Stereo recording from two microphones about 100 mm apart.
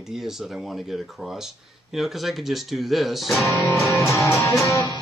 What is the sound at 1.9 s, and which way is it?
Speech, centre (ahead or behind).